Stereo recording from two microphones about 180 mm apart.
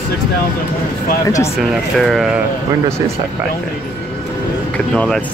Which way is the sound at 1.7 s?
Centre (ahead or behind).